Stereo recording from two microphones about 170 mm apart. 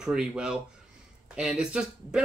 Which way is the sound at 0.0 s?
5° right (ahead or behind).